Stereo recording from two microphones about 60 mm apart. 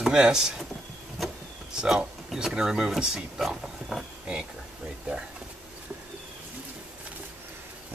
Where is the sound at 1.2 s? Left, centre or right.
Centre.